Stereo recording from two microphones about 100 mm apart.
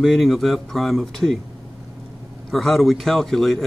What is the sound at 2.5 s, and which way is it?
A man's voice, centre (ahead or behind).